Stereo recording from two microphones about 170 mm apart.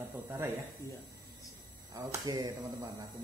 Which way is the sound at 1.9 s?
20° right (ahead or behind).